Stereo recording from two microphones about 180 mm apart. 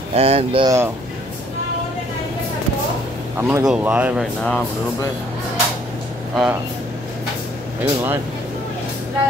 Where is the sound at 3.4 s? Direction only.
10° right (ahead or behind).